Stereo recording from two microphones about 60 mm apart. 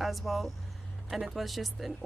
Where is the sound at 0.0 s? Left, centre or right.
Centre.